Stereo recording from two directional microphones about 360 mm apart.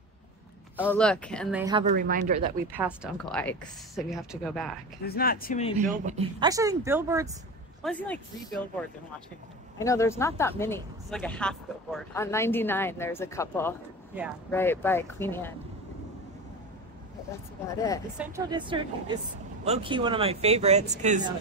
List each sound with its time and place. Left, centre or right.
0.7 s speech: centre
1.6 s speech: centre
2.7 s speech: centre
5.0 s speech: left
5.8 s speech: centre
7.8 s speech: centre
9.8 s speech: centre
17.7 s speech: centre
18.1 s speech: centre